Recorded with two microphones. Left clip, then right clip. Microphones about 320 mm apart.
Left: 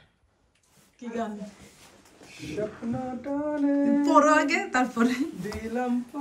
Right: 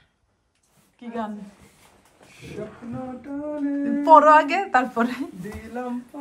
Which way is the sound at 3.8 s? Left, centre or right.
Centre.